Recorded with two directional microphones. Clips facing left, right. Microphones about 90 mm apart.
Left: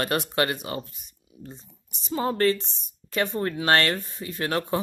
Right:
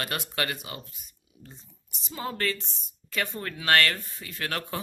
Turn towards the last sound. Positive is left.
turn(degrees=25)  # may be behind; listen again after turning